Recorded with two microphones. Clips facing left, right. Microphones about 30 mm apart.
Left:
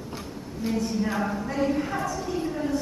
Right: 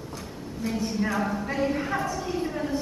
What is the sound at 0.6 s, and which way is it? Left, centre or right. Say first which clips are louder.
Speech: left 2 dB; centre.